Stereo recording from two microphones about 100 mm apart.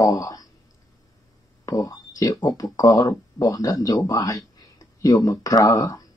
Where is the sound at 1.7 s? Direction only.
35° left (ahead or behind).